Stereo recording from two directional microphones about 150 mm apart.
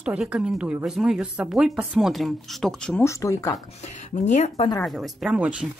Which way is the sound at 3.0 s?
20° left (ahead or behind).